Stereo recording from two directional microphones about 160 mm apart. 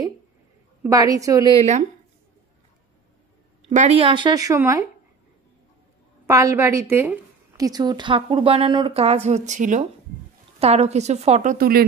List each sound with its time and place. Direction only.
0.8 s speech: 20° right (ahead or behind)
1.6 s a woman's voice: 45° right (ahead or behind)
3.6 s a woman's voice: 45° right (ahead or behind)
4.0 s speech: 30° right (ahead or behind)
6.2 s a woman's voice: 20° right (ahead or behind)
7.5 s a woman's voice: 25° right (ahead or behind); by 11.5 s 45° right (ahead or behind)
11.5 s speech: 65° right (ahead or behind)